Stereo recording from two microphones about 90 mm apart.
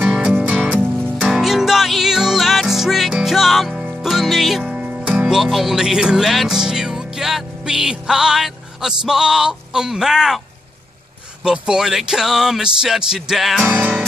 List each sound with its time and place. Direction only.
0.0 s music: 10° right (ahead or behind)
1.2 s music: 5° right (ahead or behind)
4.7 s music: 15° right (ahead or behind)
11.4 s speech: 10° right (ahead or behind)
13.7 s music: 15° right (ahead or behind)